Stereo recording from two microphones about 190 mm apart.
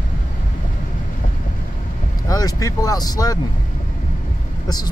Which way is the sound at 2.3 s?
20° left (ahead or behind).